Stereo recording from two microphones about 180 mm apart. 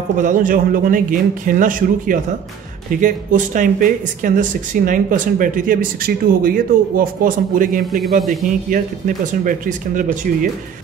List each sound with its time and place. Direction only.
0.2 s speech: 50° right (ahead or behind)